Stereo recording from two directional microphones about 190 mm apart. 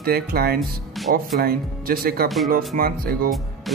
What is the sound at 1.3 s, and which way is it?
Speech, 50° right (ahead or behind).